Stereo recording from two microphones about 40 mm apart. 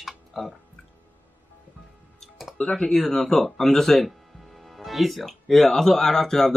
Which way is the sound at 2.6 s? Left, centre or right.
Left.